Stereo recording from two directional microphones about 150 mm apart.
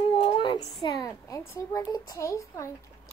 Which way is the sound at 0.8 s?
20° left (ahead or behind).